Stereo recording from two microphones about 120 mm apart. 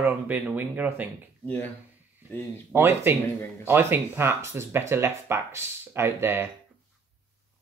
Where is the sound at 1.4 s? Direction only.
15° left (ahead or behind).